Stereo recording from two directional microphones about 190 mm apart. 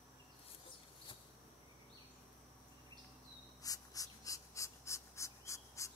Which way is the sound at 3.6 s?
20° left (ahead or behind).